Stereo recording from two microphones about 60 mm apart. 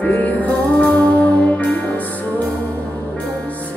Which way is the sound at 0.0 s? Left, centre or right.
Left.